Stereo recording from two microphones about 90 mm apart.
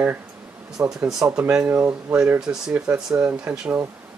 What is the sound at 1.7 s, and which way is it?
Speech, 30° right (ahead or behind).